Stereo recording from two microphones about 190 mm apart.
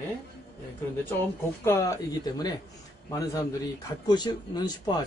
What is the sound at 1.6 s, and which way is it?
A man's voice, 15° left (ahead or behind).